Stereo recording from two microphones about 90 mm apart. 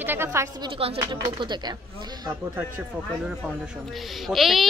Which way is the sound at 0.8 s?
60° right (ahead or behind).